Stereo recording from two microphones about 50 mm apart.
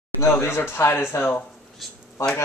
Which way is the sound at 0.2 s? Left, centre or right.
Left.